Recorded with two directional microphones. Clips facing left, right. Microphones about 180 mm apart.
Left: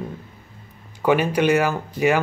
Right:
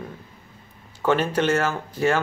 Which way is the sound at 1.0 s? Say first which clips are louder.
Left 3 dB; 10° left (ahead or behind).